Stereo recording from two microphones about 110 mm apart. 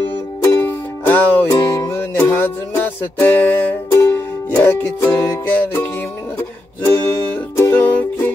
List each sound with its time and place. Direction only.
0.6 s music: 15° left (ahead or behind)